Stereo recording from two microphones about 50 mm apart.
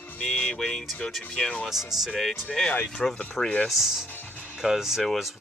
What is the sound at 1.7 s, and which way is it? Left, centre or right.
Speech, centre.